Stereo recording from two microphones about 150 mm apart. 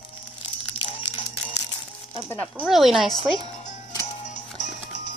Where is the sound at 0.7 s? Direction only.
40° left (ahead or behind).